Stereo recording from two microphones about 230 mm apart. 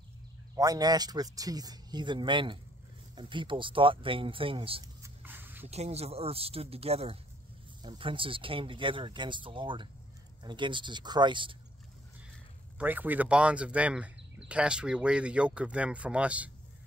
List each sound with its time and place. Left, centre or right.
0.6 s speech: centre
5.0 s a sound: centre
5.7 s speech: right
12.7 s speech: centre